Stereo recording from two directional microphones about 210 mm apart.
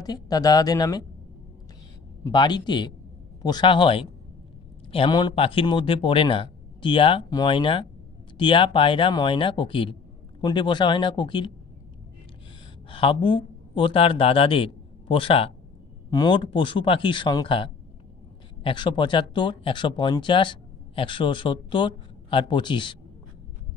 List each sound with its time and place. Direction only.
0.0 s speech: 20° left (ahead or behind)
2.2 s speech: 20° left (ahead or behind)
12.9 s a man's voice: 25° left (ahead or behind)